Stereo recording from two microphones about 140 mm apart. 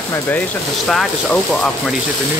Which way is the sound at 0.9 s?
5° left (ahead or behind).